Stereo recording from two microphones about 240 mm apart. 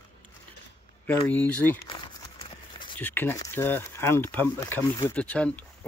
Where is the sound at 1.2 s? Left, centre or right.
Centre.